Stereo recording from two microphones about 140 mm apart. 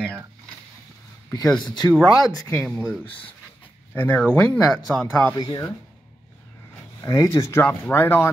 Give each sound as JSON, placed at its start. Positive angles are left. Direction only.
{"t": 1.6, "sound": "speech", "side_deg": 30}
{"t": 1.9, "sound": "speech", "side_deg": 5}
{"t": 2.3, "sound": "speech", "side_deg": 20}
{"t": 2.7, "sound": "speech", "side_deg": 0}
{"t": 3.9, "sound": "speech", "side_deg": 10}
{"t": 5.4, "sound": "speech", "side_deg": 30}
{"t": 7.0, "sound": "speech", "side_deg": 20}